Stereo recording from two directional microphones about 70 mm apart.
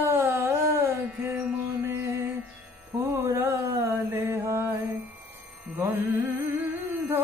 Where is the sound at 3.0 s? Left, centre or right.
Right.